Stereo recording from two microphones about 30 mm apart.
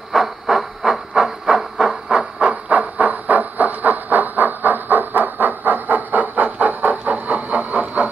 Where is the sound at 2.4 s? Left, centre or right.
Right.